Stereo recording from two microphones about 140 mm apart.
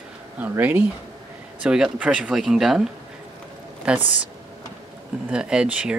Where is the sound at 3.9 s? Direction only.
5° right (ahead or behind).